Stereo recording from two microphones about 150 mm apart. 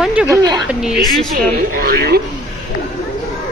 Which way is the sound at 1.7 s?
90° right.